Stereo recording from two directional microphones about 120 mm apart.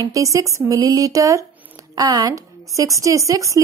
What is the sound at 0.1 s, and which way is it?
A woman's voice, 25° right (ahead or behind).